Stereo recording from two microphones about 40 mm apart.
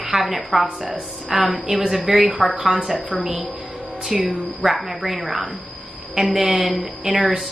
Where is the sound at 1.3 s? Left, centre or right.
Centre.